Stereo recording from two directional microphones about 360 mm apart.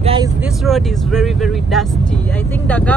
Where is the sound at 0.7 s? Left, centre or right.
Centre.